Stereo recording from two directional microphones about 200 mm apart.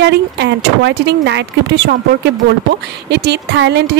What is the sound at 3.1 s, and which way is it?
Speech, 55° right (ahead or behind).